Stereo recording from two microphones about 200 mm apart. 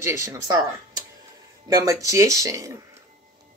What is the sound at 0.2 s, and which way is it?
Speech, 15° right (ahead or behind).